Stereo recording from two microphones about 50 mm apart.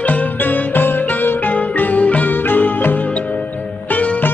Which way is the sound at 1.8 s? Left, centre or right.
Left.